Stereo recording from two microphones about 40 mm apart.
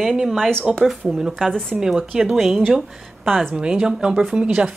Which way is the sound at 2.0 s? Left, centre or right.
Right.